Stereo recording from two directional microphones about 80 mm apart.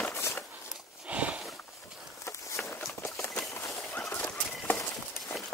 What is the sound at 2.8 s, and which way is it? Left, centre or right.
Run, centre.